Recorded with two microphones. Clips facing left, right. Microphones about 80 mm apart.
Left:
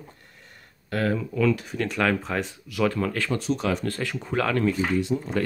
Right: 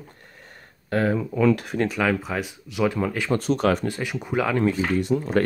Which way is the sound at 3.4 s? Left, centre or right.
Right.